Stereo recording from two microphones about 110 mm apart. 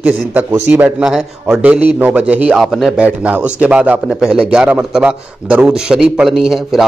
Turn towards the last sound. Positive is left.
turn(degrees=-5)  # may be behind; listen again after turning